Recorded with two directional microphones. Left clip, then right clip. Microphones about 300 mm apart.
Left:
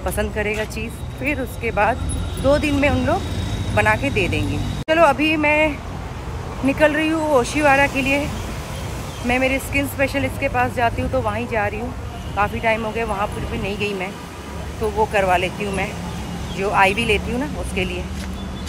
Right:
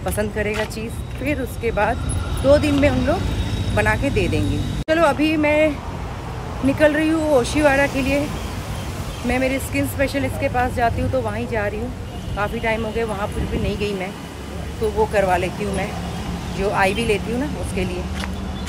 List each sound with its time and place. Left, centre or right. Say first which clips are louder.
0.0 s speech: even; centre
6.7 s speech: even; centre
9.3 s speech: left 2 dB; centre
15.1 s speech: left 1 dB; centre